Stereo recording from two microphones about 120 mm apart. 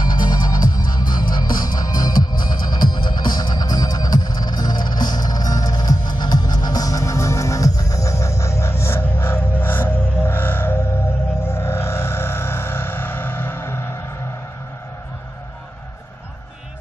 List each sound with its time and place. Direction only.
0.0 s music: 35° left (ahead or behind)